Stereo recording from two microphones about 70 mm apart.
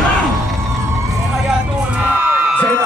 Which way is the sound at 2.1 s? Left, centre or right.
Right.